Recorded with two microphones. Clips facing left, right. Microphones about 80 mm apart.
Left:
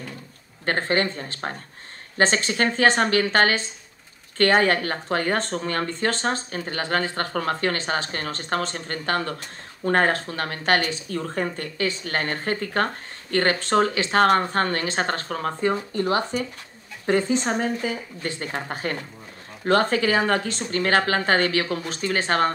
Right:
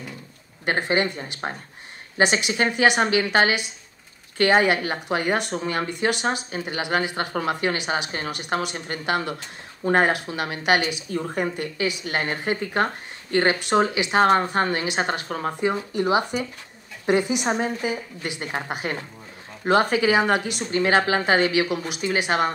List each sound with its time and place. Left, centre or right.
0.7 s speech: centre